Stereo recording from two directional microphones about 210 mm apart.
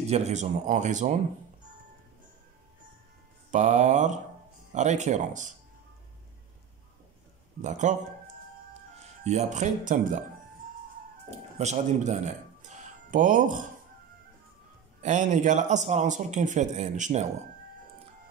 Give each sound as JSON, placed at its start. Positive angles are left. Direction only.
{"t": 0.0, "sound": "a man's voice", "side_deg": -30}
{"t": 3.5, "sound": "a man's voice", "side_deg": -35}
{"t": 7.6, "sound": "a man's voice", "side_deg": -35}
{"t": 9.2, "sound": "a man's voice", "side_deg": -30}
{"t": 11.2, "sound": "speech", "side_deg": -30}
{"t": 15.0, "sound": "a man's voice", "side_deg": -35}